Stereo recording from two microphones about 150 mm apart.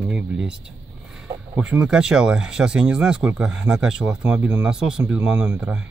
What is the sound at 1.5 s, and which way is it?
Speech, 5° right (ahead or behind).